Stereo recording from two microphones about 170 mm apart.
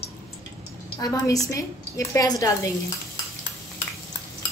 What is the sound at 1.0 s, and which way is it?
A woman's voice, 20° left (ahead or behind).